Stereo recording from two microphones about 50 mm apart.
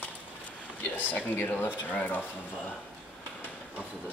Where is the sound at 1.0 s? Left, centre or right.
Left.